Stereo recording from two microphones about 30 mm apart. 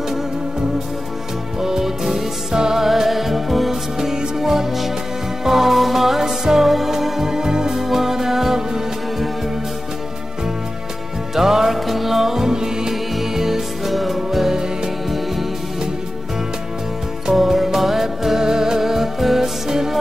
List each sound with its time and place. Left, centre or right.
1.6 s music: centre
2.8 s music: centre
4.0 s music: centre
7.2 s music: right
7.7 s music: centre
11.3 s music: centre
17.3 s music: centre